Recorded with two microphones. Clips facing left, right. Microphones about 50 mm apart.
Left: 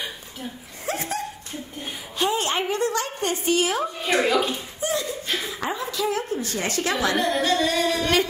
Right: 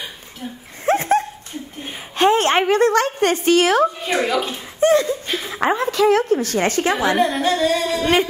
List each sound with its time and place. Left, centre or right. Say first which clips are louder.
0.8 s a sound: right 11 dB; right
2.1 s a woman's voice: right 9 dB; right
4.0 s a woman's voice: right 1 dB; centre
4.7 s laughter: right 14 dB; right
5.5 s a woman's voice: right 9 dB; right
6.5 s a woman's voice: right 7 dB; right
7.2 s a woman's voice: right 4 dB; centre
8.0 s a woman's voice: right 7 dB; right